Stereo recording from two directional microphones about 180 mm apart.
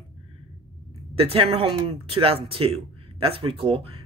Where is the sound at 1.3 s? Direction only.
30° right (ahead or behind).